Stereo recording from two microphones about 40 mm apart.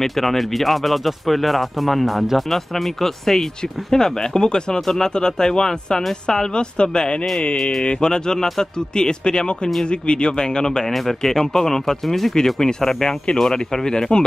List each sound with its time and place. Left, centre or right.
0.0 s speech: centre
4.8 s speech: centre; by 7.2 s left
7.5 s speech: centre
7.8 s speech: left